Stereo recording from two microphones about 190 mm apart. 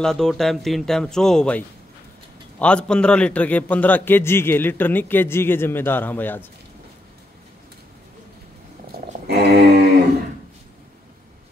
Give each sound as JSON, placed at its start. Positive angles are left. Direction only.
{"t": 0.0, "sound": "speech", "side_deg": 0}
{"t": 2.6, "sound": "a man's voice", "side_deg": 5}
{"t": 9.4, "sound": "a sound", "side_deg": -60}